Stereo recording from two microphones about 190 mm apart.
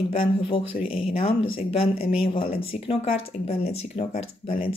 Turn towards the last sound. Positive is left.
turn(degrees=30)  # may be behind; listen again after turning